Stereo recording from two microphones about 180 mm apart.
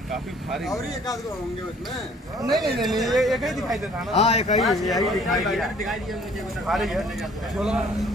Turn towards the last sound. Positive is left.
turn(degrees=-5)  # may be behind; listen again after turning